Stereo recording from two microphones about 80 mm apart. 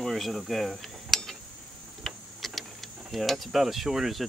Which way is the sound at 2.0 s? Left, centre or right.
Centre.